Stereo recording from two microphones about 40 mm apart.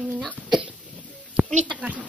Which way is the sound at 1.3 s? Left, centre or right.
Right.